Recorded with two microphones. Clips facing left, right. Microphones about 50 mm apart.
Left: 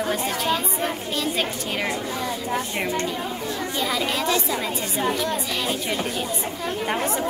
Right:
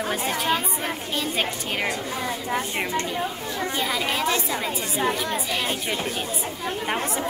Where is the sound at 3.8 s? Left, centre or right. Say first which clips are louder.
Left 1 dB; centre.